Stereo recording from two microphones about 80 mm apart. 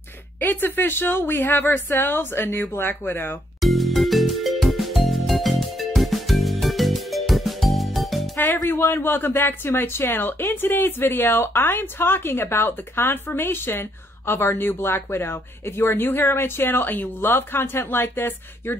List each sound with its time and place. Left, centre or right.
0.4 s speech: left
3.6 s music: centre
8.6 s speech: left